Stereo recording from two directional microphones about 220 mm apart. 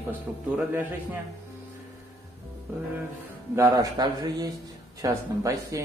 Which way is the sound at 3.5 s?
15° right (ahead or behind).